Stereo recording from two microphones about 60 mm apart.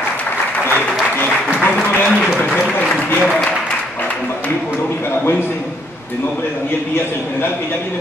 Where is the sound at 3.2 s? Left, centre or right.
Centre.